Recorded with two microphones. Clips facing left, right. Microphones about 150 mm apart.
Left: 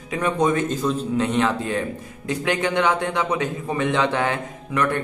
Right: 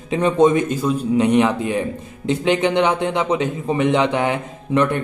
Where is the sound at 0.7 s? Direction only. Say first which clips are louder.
Right 4 dB; 10° right (ahead or behind).